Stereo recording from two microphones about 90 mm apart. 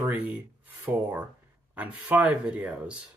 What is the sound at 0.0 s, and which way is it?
Speech, 20° right (ahead or behind).